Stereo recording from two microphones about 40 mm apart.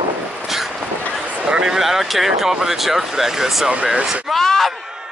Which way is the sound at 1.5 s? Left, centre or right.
Right.